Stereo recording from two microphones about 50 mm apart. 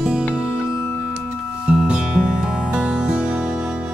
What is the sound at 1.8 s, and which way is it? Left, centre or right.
Music, centre.